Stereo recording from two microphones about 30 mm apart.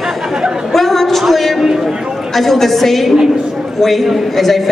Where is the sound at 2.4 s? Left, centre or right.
Centre.